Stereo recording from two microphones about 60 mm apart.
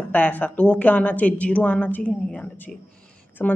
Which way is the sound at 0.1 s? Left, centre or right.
Left.